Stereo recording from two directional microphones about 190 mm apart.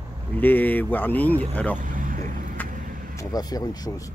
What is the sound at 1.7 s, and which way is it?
Vehicle, 45° right (ahead or behind).